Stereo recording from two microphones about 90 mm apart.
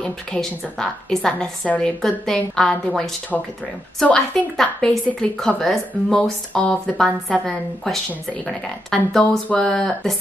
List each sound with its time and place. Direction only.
0.0 s a woman's voice: 10° left (ahead or behind)